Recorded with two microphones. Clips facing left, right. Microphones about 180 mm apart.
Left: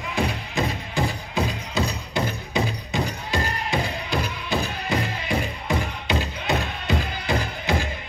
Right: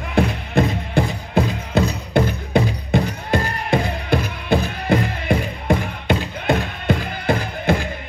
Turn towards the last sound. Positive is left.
turn(degrees=-55)  # may be behind; listen again after turning